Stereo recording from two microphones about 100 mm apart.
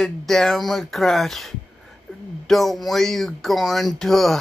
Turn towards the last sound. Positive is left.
turn(degrees=5)  # may be behind; listen again after turning